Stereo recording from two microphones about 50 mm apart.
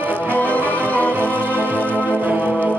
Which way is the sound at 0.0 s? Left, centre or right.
Right.